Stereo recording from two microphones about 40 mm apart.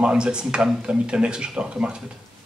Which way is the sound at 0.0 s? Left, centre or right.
Right.